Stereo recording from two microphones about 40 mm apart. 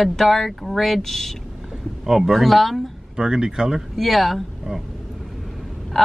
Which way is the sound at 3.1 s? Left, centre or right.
Centre.